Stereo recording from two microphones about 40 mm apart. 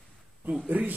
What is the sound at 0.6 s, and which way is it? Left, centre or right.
Speech, right.